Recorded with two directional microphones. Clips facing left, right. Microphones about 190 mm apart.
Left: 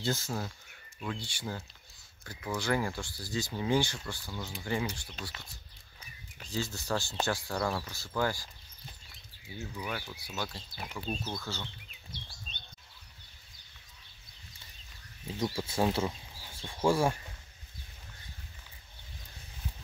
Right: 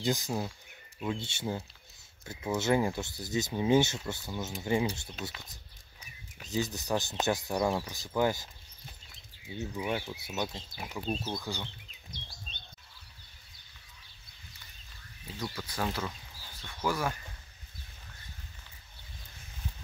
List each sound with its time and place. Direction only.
0.0 s speech: 15° right (ahead or behind)
6.4 s speech: 20° right (ahead or behind)
9.5 s speech: 25° right (ahead or behind)
15.5 s speech: 25° left (ahead or behind)